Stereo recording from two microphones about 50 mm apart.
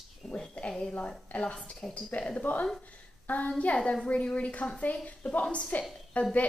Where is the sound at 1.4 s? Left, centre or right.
Left.